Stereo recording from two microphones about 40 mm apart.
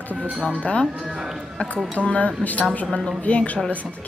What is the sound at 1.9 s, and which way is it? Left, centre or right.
Speech, left.